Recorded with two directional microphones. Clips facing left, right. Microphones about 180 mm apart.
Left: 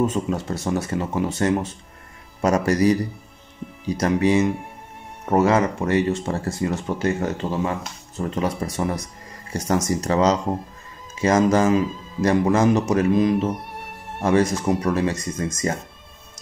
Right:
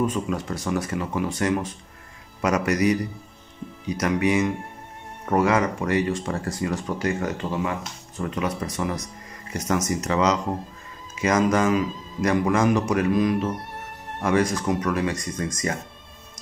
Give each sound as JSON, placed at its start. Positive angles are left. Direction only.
{"t": 0.0, "sound": "speech", "side_deg": 25}